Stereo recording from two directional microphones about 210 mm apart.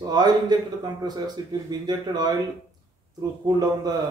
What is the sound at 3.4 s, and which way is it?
Speech, 20° right (ahead or behind).